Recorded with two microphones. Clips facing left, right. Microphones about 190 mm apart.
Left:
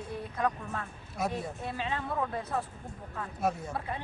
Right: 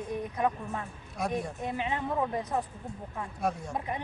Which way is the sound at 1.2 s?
5° left (ahead or behind).